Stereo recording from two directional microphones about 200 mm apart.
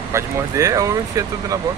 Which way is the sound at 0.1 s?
15° right (ahead or behind).